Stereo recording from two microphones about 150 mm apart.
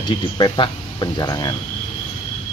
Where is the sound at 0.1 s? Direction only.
35° left (ahead or behind).